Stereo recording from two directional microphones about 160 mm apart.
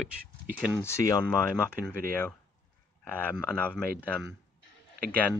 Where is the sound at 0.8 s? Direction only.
20° left (ahead or behind).